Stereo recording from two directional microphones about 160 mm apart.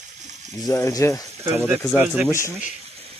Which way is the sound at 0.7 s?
20° left (ahead or behind).